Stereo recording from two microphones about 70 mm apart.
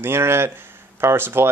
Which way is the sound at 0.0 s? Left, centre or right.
Right.